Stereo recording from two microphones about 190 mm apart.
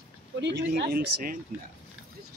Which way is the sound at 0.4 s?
60° right (ahead or behind).